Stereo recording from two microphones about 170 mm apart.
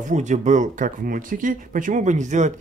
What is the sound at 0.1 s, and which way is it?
Speech, 45° right (ahead or behind).